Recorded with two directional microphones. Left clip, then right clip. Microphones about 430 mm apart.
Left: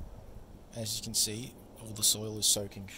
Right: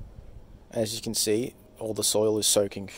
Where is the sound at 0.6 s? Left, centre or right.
Centre.